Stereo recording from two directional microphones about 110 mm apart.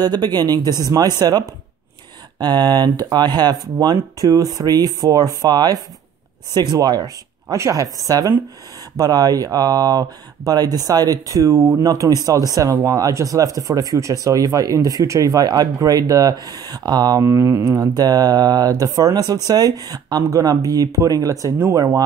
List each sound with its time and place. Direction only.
0.0 s speech: 40° right (ahead or behind)